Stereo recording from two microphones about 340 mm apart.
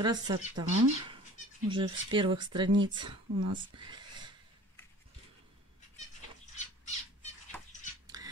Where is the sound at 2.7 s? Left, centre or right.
Right.